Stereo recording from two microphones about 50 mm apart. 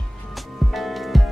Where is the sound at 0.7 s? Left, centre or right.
Centre.